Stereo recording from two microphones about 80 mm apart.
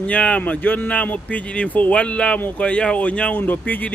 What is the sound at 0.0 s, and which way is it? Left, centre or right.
A man's voice, centre.